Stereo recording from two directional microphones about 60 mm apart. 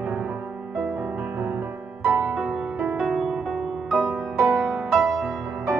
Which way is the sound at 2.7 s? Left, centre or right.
Right.